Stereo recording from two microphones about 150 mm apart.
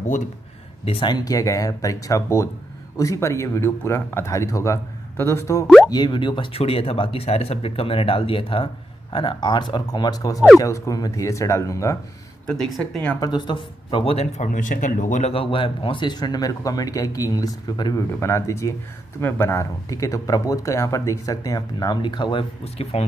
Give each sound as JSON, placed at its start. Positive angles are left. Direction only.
{"t": 0.8, "sound": "speech", "side_deg": 35}
{"t": 12.4, "sound": "speech", "side_deg": 10}
{"t": 13.2, "sound": "speech", "side_deg": 30}
{"t": 15.3, "sound": "speech", "side_deg": 35}